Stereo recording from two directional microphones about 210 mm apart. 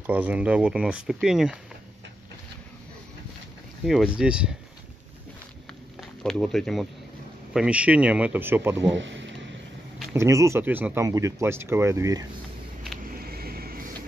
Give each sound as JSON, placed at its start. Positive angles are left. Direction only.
{"t": 0.0, "sound": "speech", "side_deg": -10}
{"t": 3.8, "sound": "speech", "side_deg": 0}
{"t": 5.9, "sound": "speech", "side_deg": 0}
{"t": 8.9, "sound": "speech", "side_deg": -60}
{"t": 10.1, "sound": "speech", "side_deg": -15}
{"t": 13.0, "sound": "a sound", "side_deg": -45}